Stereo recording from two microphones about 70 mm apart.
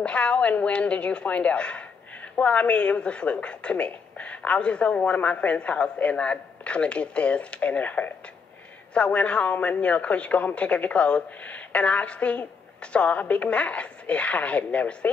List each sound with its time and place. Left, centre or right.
0.0 s a woman's voice: centre